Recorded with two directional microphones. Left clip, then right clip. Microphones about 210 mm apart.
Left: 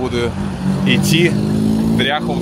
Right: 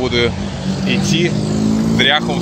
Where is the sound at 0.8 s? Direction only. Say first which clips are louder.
Left 2 dB; 20° left (ahead or behind).